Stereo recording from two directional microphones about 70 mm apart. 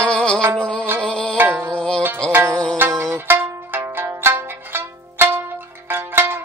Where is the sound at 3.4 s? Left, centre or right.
Right.